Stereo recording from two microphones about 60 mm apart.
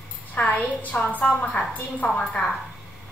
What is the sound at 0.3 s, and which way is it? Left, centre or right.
A woman's voice, left.